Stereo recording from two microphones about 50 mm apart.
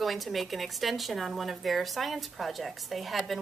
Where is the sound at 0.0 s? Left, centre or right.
Centre.